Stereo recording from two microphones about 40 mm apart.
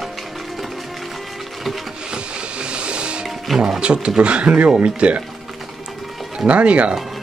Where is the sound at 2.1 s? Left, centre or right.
Right.